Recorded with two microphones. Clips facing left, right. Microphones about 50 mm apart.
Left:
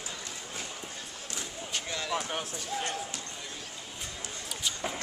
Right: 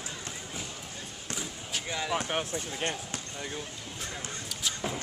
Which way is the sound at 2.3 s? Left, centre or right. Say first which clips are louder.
Right 2 dB; right.